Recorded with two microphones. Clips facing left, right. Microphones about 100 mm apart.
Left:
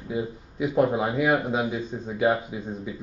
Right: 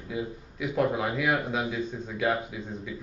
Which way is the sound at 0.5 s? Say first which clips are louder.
Left 4 dB; 25° left (ahead or behind).